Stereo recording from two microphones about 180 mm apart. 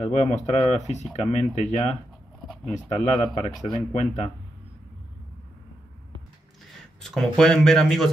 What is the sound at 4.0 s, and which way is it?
Speech, 40° left (ahead or behind).